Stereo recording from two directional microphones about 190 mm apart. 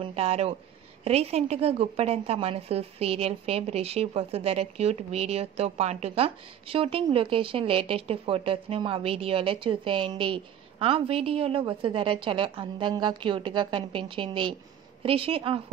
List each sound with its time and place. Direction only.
0.0 s a woman's voice: 30° right (ahead or behind)